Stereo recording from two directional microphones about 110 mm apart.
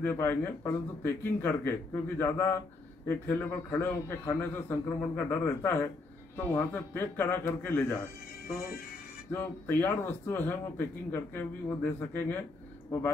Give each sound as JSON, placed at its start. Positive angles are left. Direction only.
{"t": 0.0, "sound": "speech", "side_deg": 20}